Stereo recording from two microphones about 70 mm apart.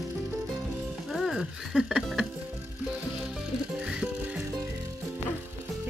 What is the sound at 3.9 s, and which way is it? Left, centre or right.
Music, centre.